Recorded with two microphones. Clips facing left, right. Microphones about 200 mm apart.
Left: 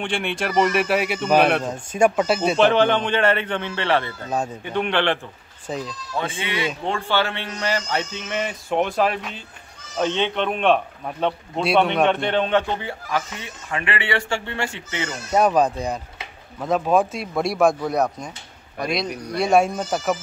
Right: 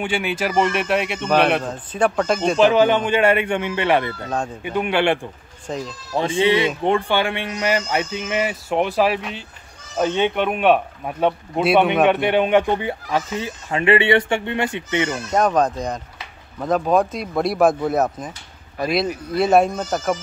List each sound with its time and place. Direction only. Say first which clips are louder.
0.0 s speech: right 3 dB; 5° right (ahead or behind)
5.7 s speech: right 1 dB; 5° left (ahead or behind)
6.1 s speech: right 9 dB; 30° right (ahead or behind)
15.3 s speech: left 1 dB; 10° left (ahead or behind)